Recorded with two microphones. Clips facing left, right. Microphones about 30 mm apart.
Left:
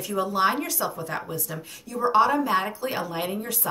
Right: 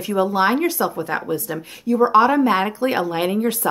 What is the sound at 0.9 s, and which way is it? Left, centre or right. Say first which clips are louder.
A woman's voice: right 8 dB; right.